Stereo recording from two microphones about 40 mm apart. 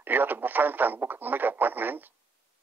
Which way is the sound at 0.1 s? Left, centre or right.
Right.